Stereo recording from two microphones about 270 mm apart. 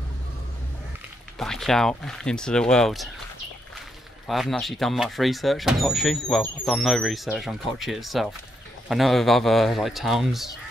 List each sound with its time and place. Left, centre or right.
1.4 s speech: centre
4.3 s speech: centre